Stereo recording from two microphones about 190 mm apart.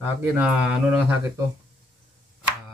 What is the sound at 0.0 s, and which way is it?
Speech, 10° right (ahead or behind).